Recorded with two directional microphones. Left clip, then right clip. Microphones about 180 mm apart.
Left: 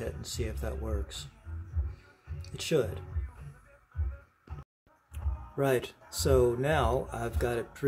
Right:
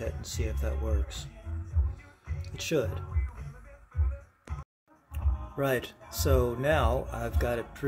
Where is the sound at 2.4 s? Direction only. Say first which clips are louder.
Even; 15° left (ahead or behind).